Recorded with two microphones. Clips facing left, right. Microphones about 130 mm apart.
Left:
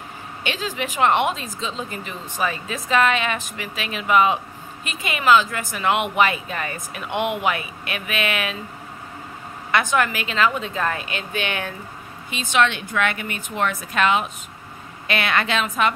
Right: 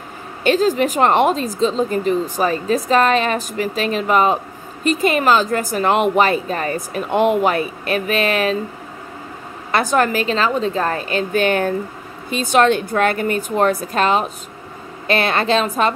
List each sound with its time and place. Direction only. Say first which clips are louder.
0.4 s speech: right 12 dB; 40° right (ahead or behind)
9.7 s speech: right 4 dB; 35° right (ahead or behind)